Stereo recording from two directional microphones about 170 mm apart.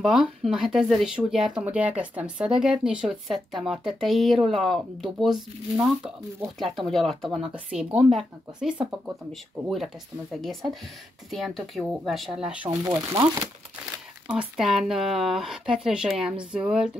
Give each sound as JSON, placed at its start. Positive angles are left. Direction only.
{"t": 0.0, "sound": "speech", "side_deg": 0}
{"t": 6.6, "sound": "speech", "side_deg": 0}
{"t": 12.6, "sound": "speech", "side_deg": -25}
{"t": 14.2, "sound": "speech", "side_deg": -5}